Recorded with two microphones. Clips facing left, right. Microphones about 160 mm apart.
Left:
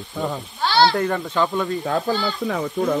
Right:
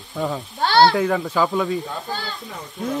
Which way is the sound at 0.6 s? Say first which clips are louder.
Right 2 dB; 55° right (ahead or behind).